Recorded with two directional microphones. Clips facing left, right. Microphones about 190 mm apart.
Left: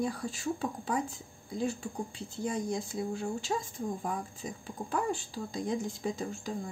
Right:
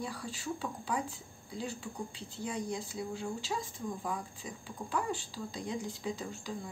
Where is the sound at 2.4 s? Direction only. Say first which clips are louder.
Left 4 dB; 45° left (ahead or behind).